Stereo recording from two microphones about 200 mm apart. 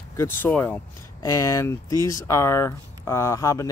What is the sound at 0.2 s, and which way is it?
Speech, 10° left (ahead or behind).